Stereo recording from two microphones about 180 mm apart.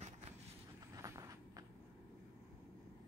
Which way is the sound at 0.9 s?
20° right (ahead or behind).